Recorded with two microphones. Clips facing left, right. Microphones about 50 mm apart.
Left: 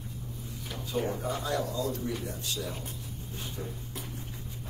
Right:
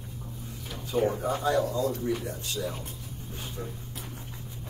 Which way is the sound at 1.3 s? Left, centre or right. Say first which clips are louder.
Right 5 dB; right.